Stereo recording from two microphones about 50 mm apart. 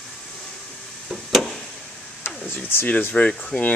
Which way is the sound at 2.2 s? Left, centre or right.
Left.